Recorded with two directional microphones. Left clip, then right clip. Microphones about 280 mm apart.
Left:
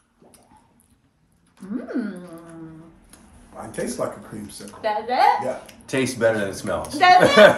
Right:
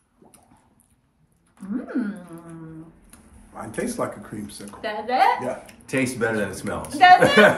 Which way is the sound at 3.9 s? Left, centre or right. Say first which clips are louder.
Left 1 dB; centre.